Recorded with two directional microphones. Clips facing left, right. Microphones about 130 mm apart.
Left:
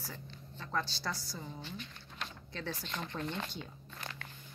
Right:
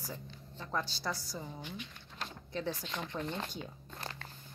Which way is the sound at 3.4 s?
40° right (ahead or behind).